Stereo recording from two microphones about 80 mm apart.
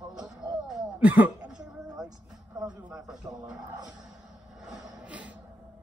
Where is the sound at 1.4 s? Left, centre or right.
Centre.